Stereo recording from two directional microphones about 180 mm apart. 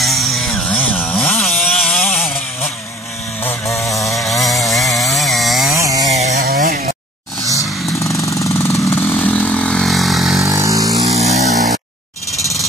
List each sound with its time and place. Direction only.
0.0 s chainsaw: centre (ahead or behind)
5.8 s chainsaw: 20° right (ahead or behind)
6.0 s chainsaw: 40° right (ahead or behind)
6.4 s chainsaw: 55° right (ahead or behind)
8.3 s vehicle: 15° left (ahead or behind); by 10.5 s centre (ahead or behind)
10.5 s vehicle: 20° right (ahead or behind)
11.1 s a sound: 35° right (ahead or behind)